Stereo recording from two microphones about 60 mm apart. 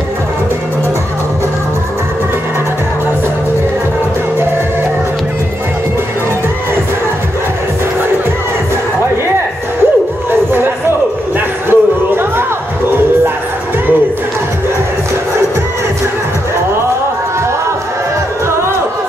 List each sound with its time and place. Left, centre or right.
11.7 s music: right